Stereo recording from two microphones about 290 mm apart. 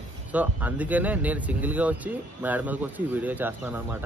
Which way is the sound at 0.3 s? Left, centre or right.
Centre.